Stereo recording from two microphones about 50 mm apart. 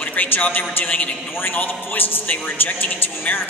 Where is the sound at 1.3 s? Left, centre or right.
Left.